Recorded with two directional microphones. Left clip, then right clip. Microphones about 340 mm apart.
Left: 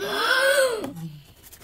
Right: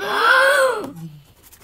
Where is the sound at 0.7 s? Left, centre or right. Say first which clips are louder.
Right 3 dB; centre.